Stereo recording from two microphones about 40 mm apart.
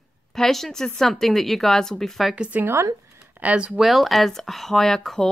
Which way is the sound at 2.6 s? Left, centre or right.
Right.